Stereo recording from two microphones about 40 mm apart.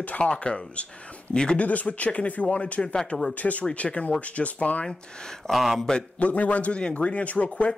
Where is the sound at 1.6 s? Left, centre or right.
Left.